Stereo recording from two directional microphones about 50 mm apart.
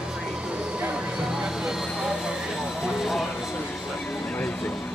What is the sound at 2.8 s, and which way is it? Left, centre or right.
Vehicle, centre.